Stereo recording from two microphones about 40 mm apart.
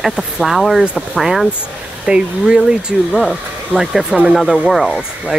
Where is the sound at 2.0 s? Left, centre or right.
Right.